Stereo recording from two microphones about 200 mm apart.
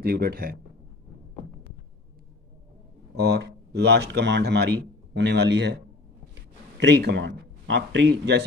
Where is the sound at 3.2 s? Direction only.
55° right (ahead or behind).